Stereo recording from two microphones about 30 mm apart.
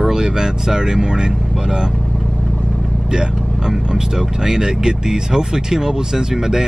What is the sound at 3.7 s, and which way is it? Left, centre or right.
Speech, right.